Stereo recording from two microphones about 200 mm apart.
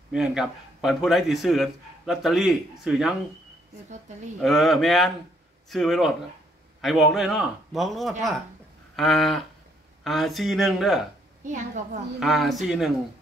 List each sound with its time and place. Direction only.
0.1 s a man's voice: 5° right (ahead or behind)
4.4 s a man's voice: centre (ahead or behind)
11.4 s a woman's voice: 35° right (ahead or behind)
12.2 s a man's voice: centre (ahead or behind)